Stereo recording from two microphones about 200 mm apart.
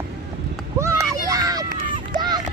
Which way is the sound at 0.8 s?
20° right (ahead or behind).